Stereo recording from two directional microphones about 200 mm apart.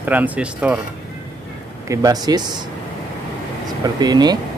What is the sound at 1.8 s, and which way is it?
Speech, 20° right (ahead or behind).